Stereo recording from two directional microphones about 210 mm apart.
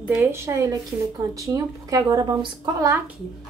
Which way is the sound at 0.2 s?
15° right (ahead or behind).